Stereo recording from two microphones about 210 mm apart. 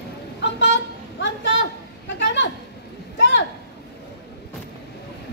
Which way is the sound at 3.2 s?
60° left (ahead or behind).